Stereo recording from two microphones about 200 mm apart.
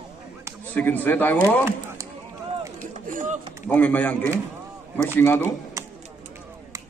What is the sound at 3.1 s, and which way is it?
Speech, 40° right (ahead or behind).